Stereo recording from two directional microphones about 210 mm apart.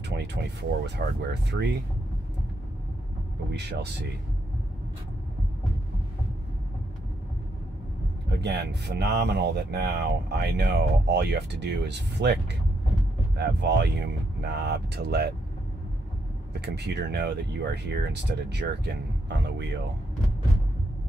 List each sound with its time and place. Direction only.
0.1 s speech: 50° right (ahead or behind)
8.4 s speech: 50° right (ahead or behind)
13.4 s speech: 50° right (ahead or behind)
16.6 s speech: 50° right (ahead or behind)